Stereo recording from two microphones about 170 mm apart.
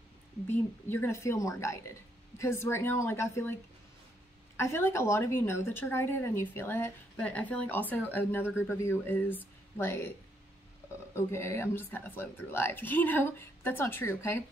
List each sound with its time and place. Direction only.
0.5 s a woman's voice: 15° left (ahead or behind)
4.6 s a woman's voice: 15° left (ahead or behind)
11.1 s a woman's voice: 15° left (ahead or behind)